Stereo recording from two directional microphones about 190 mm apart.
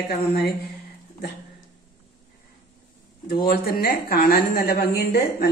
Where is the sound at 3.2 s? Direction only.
55° left (ahead or behind).